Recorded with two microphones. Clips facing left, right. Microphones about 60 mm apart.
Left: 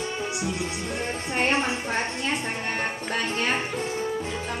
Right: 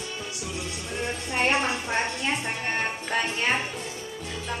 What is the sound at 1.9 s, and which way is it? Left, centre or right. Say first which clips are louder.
Speech: even; centre.